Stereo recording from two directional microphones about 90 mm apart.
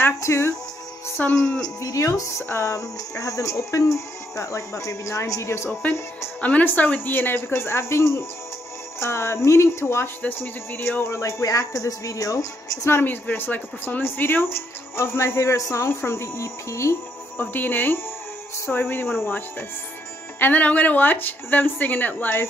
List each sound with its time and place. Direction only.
0.0 s speech: 30° left (ahead or behind)
1.2 s speech: 20° left (ahead or behind)
1.6 s speech: 40° left (ahead or behind)
6.4 s speech: 20° left (ahead or behind)
20.3 s speech: 20° left (ahead or behind)